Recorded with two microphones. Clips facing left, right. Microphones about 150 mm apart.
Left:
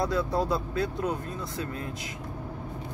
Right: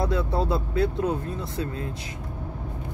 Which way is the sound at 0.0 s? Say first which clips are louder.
Right 1 dB; 25° right (ahead or behind).